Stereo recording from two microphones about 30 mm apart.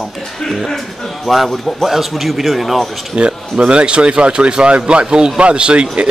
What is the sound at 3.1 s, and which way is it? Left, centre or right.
A man's voice, right.